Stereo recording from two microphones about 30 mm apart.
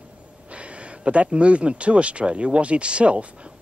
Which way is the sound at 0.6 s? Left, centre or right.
Right.